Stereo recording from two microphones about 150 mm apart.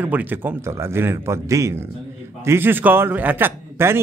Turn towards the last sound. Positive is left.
turn(degrees=-15)  # may be behind; listen again after turning